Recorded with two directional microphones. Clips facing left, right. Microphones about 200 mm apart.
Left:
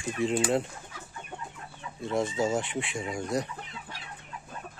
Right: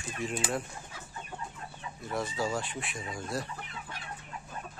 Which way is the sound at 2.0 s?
25° left (ahead or behind).